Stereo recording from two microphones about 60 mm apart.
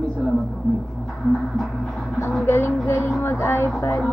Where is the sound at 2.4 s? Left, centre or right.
Left.